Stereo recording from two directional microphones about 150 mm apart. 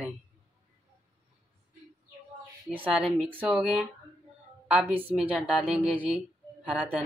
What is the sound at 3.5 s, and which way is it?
A woman's voice, 5° right (ahead or behind).